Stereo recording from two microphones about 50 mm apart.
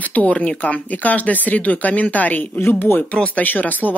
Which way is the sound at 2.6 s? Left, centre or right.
Left.